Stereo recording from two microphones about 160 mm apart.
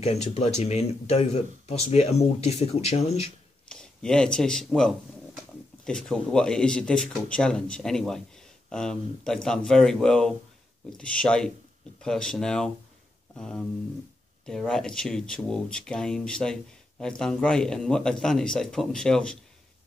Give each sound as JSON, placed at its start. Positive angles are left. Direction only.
{"t": 0.0, "sound": "speech", "side_deg": 40}
{"t": 3.6, "sound": "a man's voice", "side_deg": 5}